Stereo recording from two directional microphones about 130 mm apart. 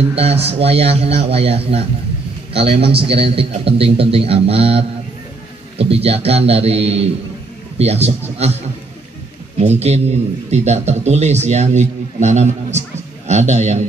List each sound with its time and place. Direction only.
0.1 s a man's voice: 50° right (ahead or behind)
9.6 s a man's voice: 60° right (ahead or behind)